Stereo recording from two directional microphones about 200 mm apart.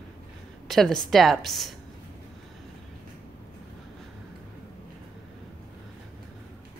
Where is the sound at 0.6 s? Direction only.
Centre (ahead or behind).